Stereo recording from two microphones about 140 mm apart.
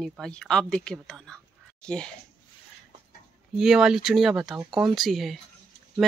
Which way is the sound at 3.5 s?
5° right (ahead or behind).